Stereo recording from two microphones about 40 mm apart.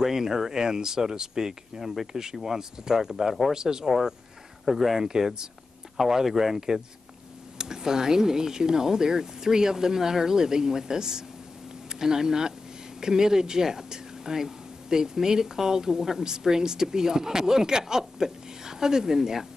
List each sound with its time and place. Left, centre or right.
0.0 s speech: centre